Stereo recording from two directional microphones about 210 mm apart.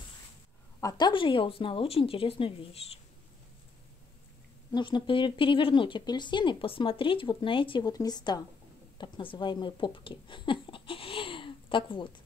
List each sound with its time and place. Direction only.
0.7 s speech: 15° left (ahead or behind)
4.7 s speech: 20° left (ahead or behind)